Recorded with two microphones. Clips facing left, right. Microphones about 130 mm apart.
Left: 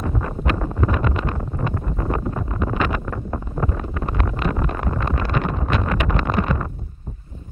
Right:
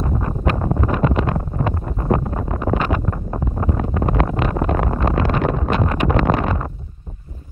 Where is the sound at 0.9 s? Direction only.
35° right (ahead or behind).